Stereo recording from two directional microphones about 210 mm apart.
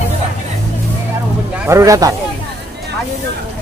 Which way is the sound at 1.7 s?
15° right (ahead or behind).